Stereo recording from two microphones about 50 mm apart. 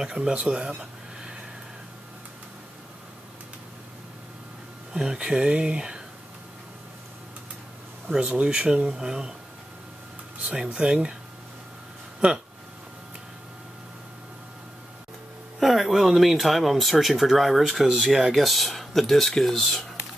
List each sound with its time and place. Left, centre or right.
0.0 s speech: centre
0.7 s a sound: centre
4.9 s speech: centre
8.2 s speech: right
10.4 s speech: right
15.6 s speech: centre